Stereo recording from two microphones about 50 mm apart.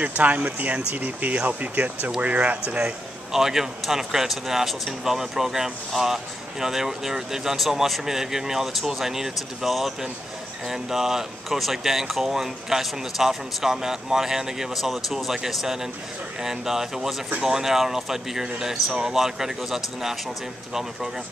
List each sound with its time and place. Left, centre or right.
0.2 s speech: right
3.3 s speech: centre